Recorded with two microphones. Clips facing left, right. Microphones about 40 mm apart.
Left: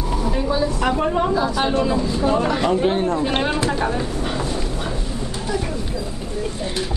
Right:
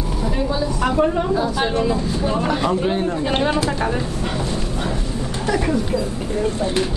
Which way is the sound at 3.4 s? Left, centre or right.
Left.